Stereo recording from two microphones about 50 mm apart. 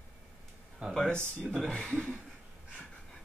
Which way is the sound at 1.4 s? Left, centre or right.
Centre.